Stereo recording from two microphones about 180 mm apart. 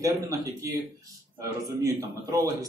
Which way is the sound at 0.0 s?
20° right (ahead or behind).